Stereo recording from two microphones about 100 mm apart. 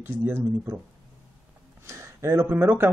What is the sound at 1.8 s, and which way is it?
Speech, 30° right (ahead or behind).